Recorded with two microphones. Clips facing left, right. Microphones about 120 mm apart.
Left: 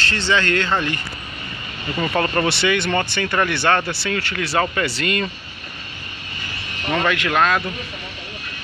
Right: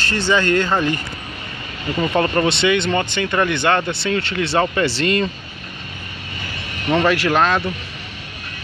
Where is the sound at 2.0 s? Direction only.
15° right (ahead or behind).